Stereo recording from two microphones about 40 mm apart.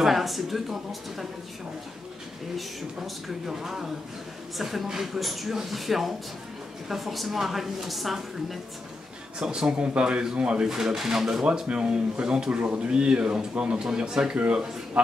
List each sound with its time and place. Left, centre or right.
0.0 s a woman's voice: centre
3.4 s a woman's voice: centre
9.4 s speech: right
10.7 s speech: centre
11.4 s speech: right